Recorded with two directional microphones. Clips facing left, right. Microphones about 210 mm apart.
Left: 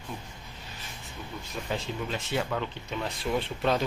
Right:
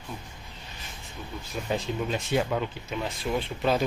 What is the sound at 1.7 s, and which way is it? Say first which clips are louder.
Speech: right 4 dB; 15° right (ahead or behind).